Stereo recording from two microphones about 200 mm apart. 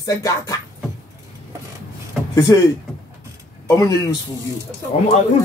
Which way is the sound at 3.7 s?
15° left (ahead or behind).